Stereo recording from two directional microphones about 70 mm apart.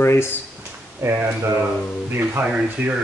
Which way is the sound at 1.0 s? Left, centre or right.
Right.